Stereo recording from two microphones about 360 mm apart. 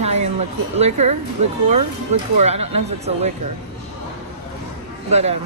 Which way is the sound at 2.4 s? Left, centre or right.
Centre.